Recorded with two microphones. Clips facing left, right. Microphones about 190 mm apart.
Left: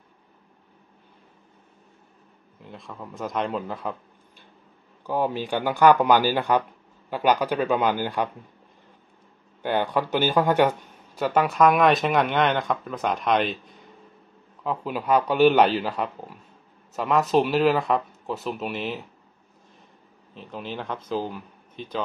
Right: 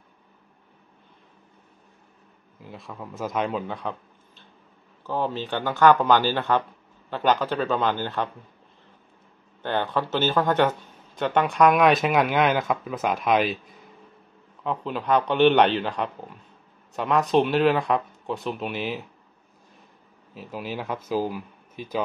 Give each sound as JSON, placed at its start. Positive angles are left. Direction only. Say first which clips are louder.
{"t": 2.6, "sound": "a man's voice", "louder": "right 1 dB", "side_deg": 0}
{"t": 5.0, "sound": "speech", "louder": "left 2 dB", "side_deg": 10}
{"t": 9.6, "sound": "a man's voice", "louder": "left 2 dB", "side_deg": 10}
{"t": 14.6, "sound": "a man's voice", "louder": "even", "side_deg": 5}
{"t": 20.3, "sound": "a man's voice", "louder": "right 1 dB", "side_deg": -5}